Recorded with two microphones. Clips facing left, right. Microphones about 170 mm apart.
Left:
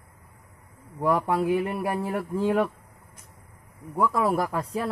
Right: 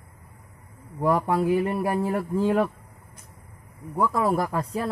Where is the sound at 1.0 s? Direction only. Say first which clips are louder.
Right 1 dB; centre (ahead or behind).